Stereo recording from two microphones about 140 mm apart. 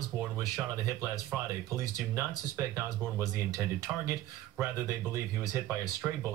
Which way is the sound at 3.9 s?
5° right (ahead or behind).